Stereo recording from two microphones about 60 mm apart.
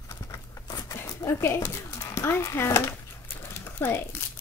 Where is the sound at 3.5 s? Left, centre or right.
Left.